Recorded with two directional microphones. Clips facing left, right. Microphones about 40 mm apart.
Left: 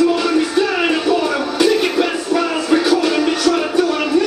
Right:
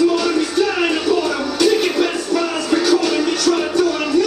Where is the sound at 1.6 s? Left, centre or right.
Centre.